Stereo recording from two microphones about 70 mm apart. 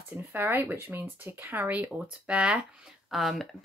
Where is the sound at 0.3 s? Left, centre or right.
Right.